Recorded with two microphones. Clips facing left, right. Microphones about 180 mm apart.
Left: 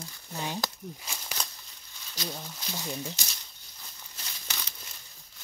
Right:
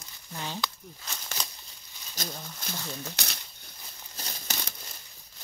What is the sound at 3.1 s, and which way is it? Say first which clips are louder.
Speech: right 1 dB; 65° right (ahead or behind).